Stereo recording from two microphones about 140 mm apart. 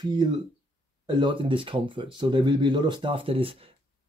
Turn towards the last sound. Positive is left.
turn(degrees=-40)  # may be behind; listen again after turning